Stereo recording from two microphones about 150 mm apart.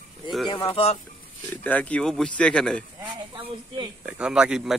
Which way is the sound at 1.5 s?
10° left (ahead or behind).